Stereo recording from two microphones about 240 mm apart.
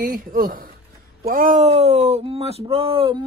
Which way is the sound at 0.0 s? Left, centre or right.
Right.